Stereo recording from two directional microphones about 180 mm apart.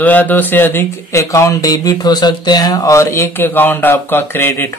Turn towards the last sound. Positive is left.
turn(degrees=15)  # may be behind; listen again after turning